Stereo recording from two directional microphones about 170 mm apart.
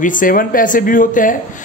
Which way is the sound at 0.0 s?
55° left (ahead or behind).